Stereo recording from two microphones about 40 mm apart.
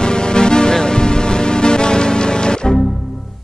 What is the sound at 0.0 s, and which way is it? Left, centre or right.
Music, left.